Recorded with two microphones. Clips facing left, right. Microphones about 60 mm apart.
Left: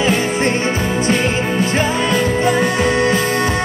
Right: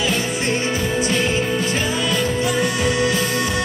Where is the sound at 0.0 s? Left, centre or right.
Left.